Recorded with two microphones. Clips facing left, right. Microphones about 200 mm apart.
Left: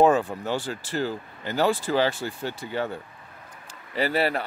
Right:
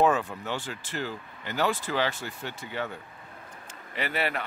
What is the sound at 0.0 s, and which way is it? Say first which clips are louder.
Speech: left 5 dB; 30° left (ahead or behind).